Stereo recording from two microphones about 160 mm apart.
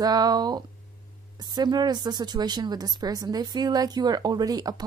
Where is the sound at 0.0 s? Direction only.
25° right (ahead or behind).